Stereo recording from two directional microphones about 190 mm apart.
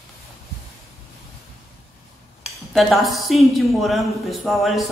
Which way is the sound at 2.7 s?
Centre (ahead or behind).